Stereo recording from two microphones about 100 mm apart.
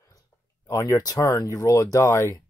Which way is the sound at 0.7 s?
35° left (ahead or behind).